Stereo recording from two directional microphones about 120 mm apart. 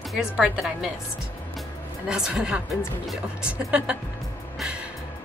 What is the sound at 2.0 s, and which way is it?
Speech, 5° right (ahead or behind).